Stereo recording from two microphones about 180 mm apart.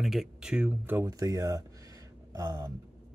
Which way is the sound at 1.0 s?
20° right (ahead or behind).